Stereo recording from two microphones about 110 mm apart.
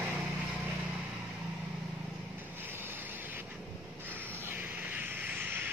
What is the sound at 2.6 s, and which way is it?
Vehicle, 20° right (ahead or behind).